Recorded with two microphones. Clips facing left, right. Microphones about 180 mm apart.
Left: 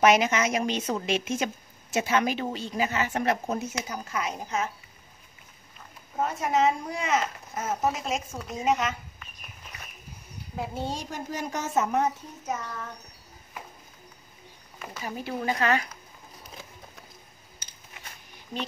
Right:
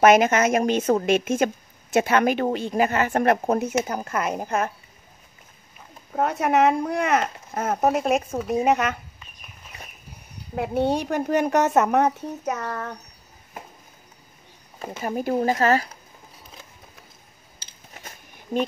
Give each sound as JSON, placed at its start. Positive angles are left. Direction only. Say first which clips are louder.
{"t": 0.0, "sound": "a woman's voice", "louder": "right 5 dB", "side_deg": -50}
{"t": 6.1, "sound": "speech", "louder": "right 5 dB", "side_deg": -65}
{"t": 10.5, "sound": "speech", "louder": "right 10 dB", "side_deg": -65}
{"t": 15.0, "sound": "speech", "louder": "right 9 dB", "side_deg": -50}
{"t": 17.6, "sound": "a sound", "louder": "right 1 dB", "side_deg": -30}
{"t": 17.9, "sound": "a sound", "louder": "right 4 dB", "side_deg": -45}